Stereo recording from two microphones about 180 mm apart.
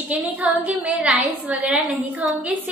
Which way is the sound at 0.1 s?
5° right (ahead or behind).